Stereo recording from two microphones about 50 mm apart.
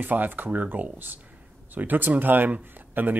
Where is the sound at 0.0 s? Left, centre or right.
Right.